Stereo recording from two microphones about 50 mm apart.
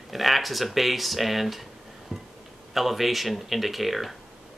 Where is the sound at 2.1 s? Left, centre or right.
Centre.